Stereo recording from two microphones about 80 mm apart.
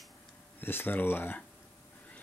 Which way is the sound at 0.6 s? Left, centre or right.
Left.